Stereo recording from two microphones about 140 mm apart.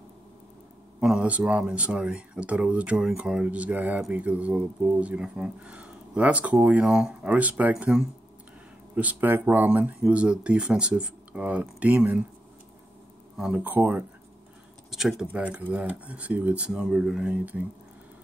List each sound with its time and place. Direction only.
1.0 s speech: 5° right (ahead or behind)
13.4 s speech: 10° right (ahead or behind)
14.9 s speech: centre (ahead or behind)